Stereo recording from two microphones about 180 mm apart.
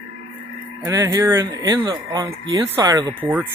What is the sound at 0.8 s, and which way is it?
Speech, 20° right (ahead or behind).